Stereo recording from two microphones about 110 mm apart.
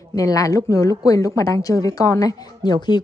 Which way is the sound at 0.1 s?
30° left (ahead or behind).